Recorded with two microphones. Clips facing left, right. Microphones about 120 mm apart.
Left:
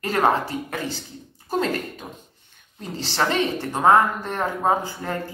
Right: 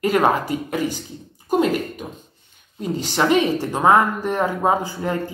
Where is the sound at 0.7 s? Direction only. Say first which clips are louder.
Right 6 dB; 15° right (ahead or behind).